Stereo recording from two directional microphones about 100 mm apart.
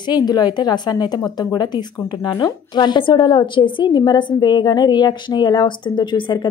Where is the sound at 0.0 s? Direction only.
45° left (ahead or behind).